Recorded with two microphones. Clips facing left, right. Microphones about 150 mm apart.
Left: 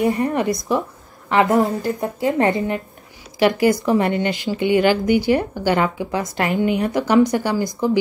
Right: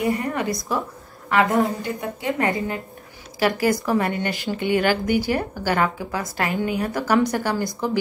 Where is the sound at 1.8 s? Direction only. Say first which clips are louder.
Left 5 dB; 35° left (ahead or behind).